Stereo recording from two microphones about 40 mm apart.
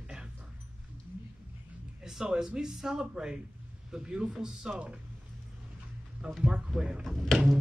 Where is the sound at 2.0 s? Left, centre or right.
Centre.